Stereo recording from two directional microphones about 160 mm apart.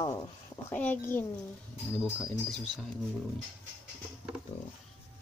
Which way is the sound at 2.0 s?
5° right (ahead or behind).